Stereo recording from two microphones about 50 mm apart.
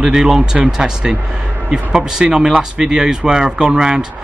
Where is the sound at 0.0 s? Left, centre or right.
Centre.